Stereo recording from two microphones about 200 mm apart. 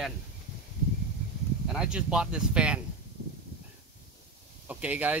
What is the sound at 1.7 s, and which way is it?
Speech, 5° right (ahead or behind).